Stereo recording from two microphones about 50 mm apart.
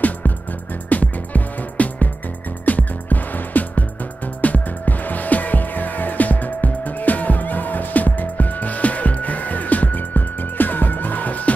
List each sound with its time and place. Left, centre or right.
0.8 s music: left